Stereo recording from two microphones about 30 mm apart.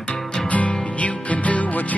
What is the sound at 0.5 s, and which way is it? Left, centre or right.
Music, left.